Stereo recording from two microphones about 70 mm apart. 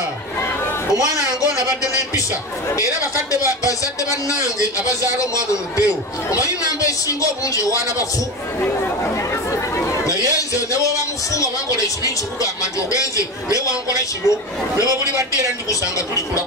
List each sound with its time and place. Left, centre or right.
2.7 s a man's voice: left
9.3 s chatter: left
10.7 s a man's voice: left